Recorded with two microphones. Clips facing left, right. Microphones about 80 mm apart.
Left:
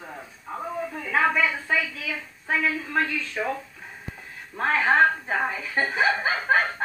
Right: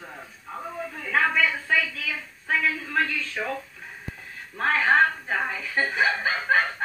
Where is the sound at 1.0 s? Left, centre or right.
Centre.